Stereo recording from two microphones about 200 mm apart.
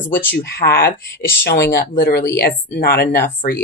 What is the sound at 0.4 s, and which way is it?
Speech, 50° left (ahead or behind).